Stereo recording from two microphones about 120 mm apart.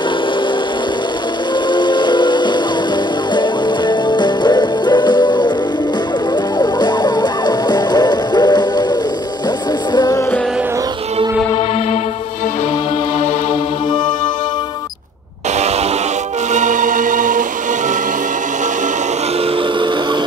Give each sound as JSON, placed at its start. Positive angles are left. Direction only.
{"t": 1.7, "sound": "train", "side_deg": 40}
{"t": 3.3, "sound": "music", "side_deg": 40}
{"t": 6.6, "sound": "music", "side_deg": 40}
{"t": 9.9, "sound": "music", "side_deg": 35}
{"t": 16.5, "sound": "choir", "side_deg": -90}